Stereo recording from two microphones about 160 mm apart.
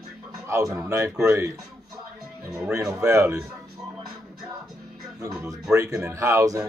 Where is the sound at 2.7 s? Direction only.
20° right (ahead or behind).